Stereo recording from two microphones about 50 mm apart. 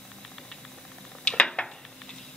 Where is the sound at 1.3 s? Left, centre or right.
Left.